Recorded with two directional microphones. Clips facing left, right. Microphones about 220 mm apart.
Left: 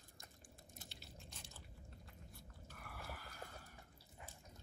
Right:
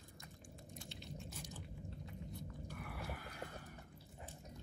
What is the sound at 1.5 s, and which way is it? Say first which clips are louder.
Biting: right 9 dB; 20° right (ahead or behind).